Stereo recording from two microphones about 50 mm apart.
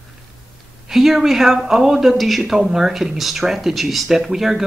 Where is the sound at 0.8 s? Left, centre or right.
Centre.